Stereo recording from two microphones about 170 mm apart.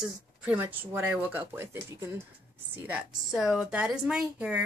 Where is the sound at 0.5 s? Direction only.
10° right (ahead or behind).